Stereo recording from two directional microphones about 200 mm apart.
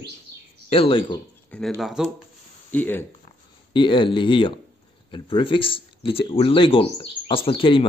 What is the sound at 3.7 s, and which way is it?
Speech, 25° left (ahead or behind).